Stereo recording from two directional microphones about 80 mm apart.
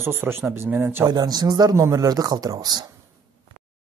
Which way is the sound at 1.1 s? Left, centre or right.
Right.